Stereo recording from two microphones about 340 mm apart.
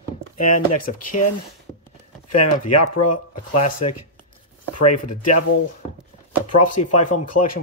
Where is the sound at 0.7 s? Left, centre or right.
Left.